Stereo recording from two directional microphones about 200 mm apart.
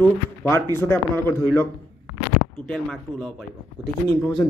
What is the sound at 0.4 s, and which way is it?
Speech, 10° left (ahead or behind).